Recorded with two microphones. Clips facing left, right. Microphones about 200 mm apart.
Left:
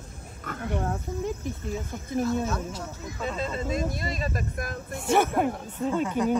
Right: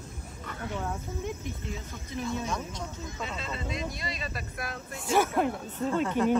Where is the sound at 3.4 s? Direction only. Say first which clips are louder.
Left 8 dB; 45° left (ahead or behind).